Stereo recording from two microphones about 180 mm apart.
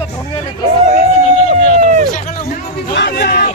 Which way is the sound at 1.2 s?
40° left (ahead or behind).